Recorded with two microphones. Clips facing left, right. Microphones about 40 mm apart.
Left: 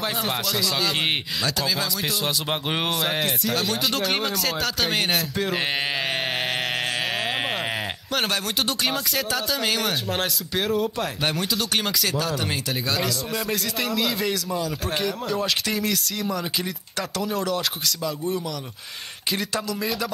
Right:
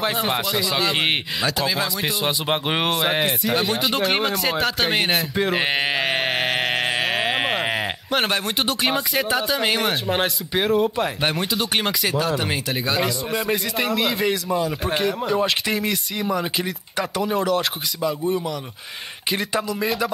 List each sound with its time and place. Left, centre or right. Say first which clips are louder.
0.0 s speech: right 4 dB; centre
7.2 s a sound: right 4 dB; centre
8.1 s speech: right 3 dB; centre